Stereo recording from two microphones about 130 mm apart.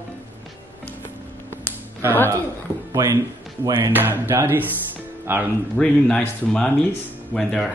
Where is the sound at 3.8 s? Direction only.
15° right (ahead or behind).